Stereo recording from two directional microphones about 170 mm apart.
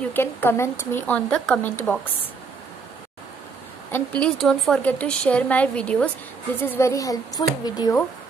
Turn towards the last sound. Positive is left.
turn(degrees=25)  # may be behind; listen again after turning